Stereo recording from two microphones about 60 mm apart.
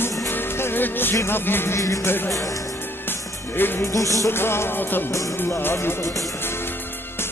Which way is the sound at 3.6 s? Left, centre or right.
Left.